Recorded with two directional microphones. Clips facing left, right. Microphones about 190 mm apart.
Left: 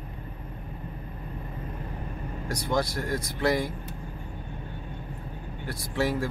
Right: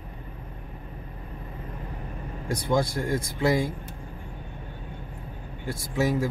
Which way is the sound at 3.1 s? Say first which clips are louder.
Right 2 dB; 50° right (ahead or behind).